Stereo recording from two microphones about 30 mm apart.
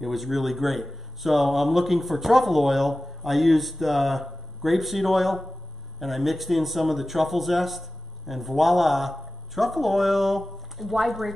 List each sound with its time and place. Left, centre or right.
0.0 s speech: centre